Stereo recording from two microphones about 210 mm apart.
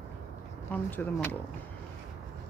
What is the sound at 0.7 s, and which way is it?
Speech, 10° left (ahead or behind).